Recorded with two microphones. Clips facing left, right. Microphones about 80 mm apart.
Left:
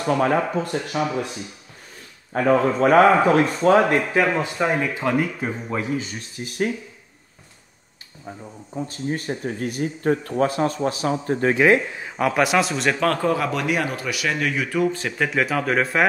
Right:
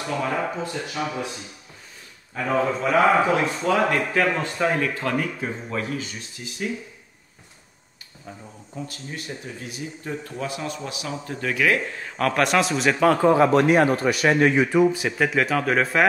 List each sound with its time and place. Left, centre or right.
0.0 s speech: left
2.3 s speech: left
4.2 s speech: centre
6.4 s speech: left
8.3 s speech: left
8.8 s speech: left
12.0 s a man's voice: centre
13.3 s a man's voice: right; by 16.1 s centre